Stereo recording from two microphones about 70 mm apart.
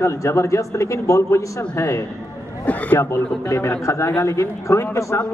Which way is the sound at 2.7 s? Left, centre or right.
Left.